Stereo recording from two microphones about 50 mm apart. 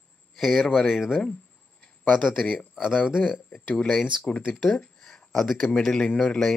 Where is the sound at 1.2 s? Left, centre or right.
Centre.